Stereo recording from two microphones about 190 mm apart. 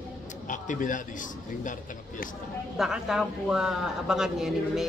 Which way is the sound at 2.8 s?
5° right (ahead or behind).